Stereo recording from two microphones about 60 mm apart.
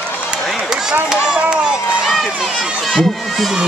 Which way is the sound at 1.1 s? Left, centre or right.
Centre.